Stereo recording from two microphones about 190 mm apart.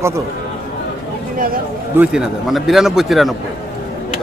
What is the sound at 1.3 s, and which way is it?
Speech, 50° right (ahead or behind).